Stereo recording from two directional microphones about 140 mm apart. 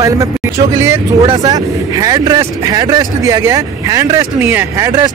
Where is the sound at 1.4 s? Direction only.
25° right (ahead or behind).